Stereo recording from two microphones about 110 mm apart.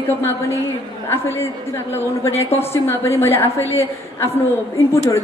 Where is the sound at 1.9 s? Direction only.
25° left (ahead or behind).